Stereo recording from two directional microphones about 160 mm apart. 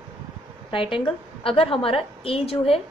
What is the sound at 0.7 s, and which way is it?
A woman's voice, 30° left (ahead or behind).